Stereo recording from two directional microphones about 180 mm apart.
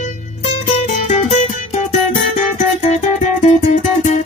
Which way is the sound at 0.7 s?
40° left (ahead or behind).